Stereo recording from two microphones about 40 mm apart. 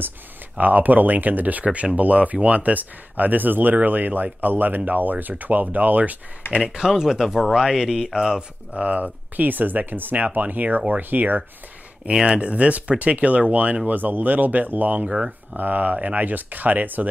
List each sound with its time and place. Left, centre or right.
0.6 s speech: right
6.5 s speech: right
10.1 s speech: right
12.1 s speech: right
12.4 s speech: right
13.8 s speech: right